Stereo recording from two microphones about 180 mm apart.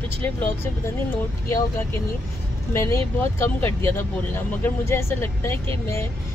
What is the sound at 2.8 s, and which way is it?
Speech, 15° left (ahead or behind).